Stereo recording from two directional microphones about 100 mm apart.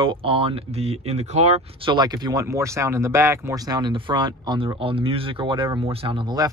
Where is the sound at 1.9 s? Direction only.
45° right (ahead or behind); by 3.6 s 30° right (ahead or behind).